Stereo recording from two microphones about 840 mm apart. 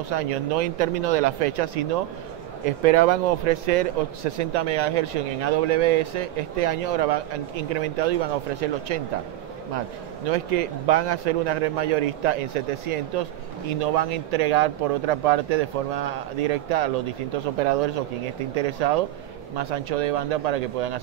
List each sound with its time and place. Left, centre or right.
0.1 s a man's voice: right